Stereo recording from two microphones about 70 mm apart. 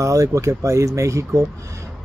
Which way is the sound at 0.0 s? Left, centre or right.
Right.